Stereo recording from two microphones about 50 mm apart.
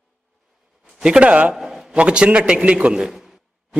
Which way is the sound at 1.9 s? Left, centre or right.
Right.